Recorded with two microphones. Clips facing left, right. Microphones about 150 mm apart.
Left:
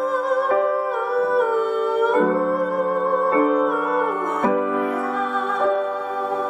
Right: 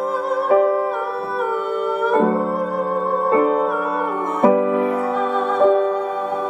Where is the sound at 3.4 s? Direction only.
5° right (ahead or behind).